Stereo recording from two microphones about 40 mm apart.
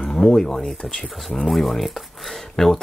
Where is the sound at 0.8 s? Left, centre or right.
Centre.